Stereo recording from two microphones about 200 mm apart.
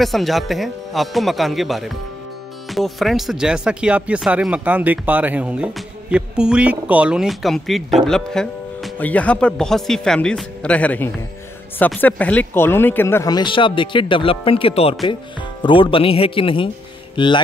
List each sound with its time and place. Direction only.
0.0 s speech: centre (ahead or behind); by 17.4 s 25° left (ahead or behind)